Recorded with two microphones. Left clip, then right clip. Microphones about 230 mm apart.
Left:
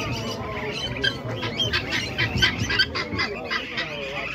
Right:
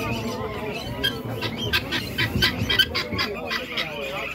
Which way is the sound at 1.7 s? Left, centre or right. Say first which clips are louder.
Even; right.